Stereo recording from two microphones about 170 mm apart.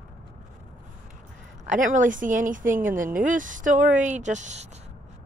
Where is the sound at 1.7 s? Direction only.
50° right (ahead or behind).